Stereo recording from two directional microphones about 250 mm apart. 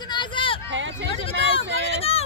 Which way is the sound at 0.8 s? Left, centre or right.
Right.